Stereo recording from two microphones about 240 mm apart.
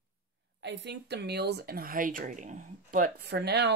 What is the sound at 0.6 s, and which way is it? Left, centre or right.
Speech, right.